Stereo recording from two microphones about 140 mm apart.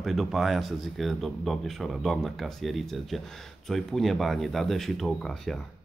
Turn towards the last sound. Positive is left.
turn(degrees=5)  # may be behind; listen again after turning